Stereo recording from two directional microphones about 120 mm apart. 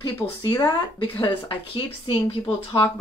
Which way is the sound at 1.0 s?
50° left (ahead or behind).